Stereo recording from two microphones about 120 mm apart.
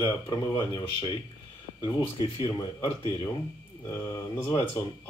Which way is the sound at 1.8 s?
35° left (ahead or behind).